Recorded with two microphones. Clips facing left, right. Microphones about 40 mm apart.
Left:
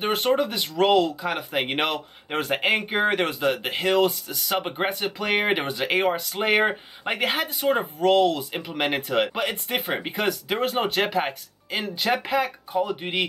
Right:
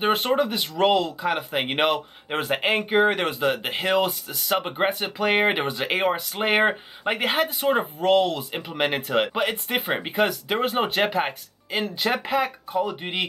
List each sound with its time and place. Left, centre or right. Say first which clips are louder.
0.0 s speech: right 1 dB; centre